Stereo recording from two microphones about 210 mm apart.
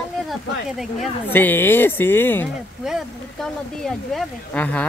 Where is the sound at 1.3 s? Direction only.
10° left (ahead or behind).